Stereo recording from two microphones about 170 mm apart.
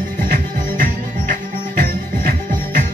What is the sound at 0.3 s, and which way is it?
Music, 50° right (ahead or behind).